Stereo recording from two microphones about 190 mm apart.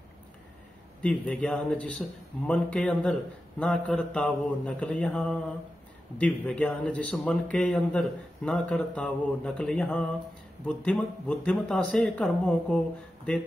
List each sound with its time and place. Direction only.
1.0 s a man's voice: 5° left (ahead or behind)